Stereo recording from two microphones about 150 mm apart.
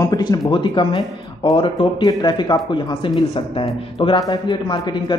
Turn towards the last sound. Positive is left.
turn(degrees=30)  # may be behind; listen again after turning